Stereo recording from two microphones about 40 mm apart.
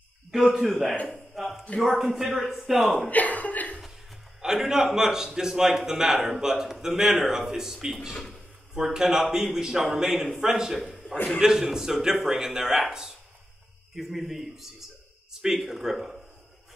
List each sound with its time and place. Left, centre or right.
0.4 s a man's voice: centre
3.1 s speech: left
4.4 s a man's voice: centre
8.1 s speech: centre
8.7 s a man's voice: centre